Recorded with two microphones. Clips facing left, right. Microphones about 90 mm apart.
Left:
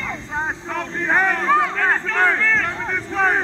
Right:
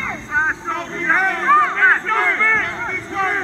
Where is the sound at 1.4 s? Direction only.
50° right (ahead or behind).